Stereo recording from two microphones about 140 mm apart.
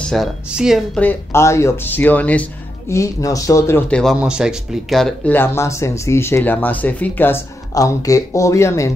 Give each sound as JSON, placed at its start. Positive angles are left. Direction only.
{"t": 0.0, "sound": "speech", "side_deg": 0}
{"t": 0.9, "sound": "speech", "side_deg": 15}
{"t": 2.9, "sound": "speech", "side_deg": 25}
{"t": 3.9, "sound": "speech", "side_deg": 5}
{"t": 5.3, "sound": "speech", "side_deg": 15}